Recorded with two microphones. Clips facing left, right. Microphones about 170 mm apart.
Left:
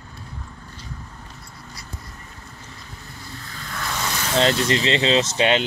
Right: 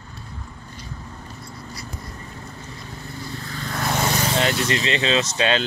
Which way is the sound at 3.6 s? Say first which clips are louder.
Right 5 dB; 45° right (ahead or behind).